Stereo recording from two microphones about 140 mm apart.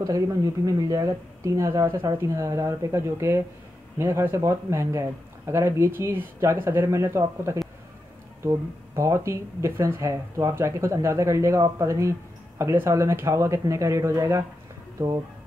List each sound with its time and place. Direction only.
0.0 s speech: 25° right (ahead or behind)